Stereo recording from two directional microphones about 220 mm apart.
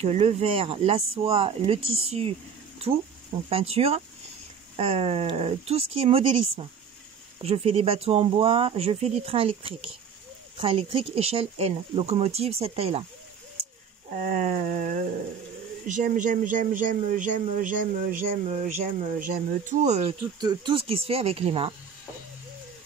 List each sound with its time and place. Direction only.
0.0 s speech: 30° right (ahead or behind)
14.1 s speech: 40° right (ahead or behind)
20.3 s speech: 20° right (ahead or behind)